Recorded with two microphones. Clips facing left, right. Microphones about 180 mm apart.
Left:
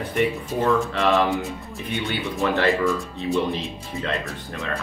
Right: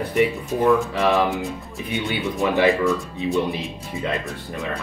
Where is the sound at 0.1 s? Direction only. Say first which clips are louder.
Right 2 dB; 15° right (ahead or behind).